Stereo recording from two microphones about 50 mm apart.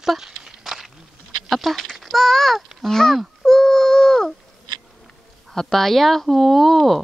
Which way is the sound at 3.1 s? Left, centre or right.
Centre.